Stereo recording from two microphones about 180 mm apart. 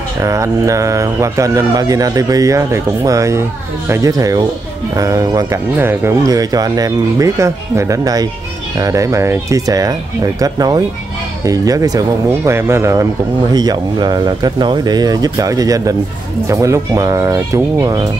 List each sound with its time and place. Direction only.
0.2 s speech: 15° right (ahead or behind)